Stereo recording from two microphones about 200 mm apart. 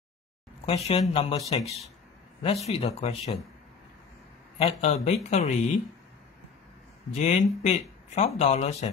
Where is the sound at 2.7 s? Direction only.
30° left (ahead or behind).